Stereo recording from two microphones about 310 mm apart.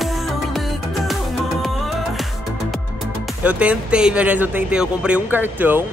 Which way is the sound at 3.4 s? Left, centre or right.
Centre.